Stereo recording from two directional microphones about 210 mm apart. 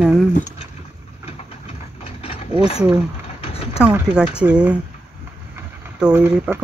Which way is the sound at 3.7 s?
5° right (ahead or behind).